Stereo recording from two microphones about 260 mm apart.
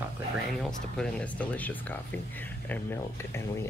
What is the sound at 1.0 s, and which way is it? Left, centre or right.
Speech, centre.